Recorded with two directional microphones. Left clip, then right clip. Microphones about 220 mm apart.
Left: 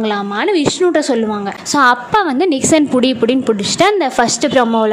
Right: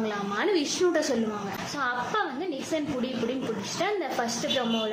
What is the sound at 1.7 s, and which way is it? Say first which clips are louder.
A woman's voice: left 18 dB; 50° left (ahead or behind).